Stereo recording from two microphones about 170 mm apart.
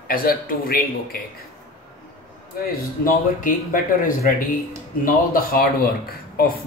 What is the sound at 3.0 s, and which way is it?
Speech, 55° left (ahead or behind).